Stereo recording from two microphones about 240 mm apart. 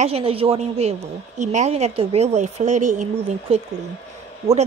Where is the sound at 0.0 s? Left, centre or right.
Right.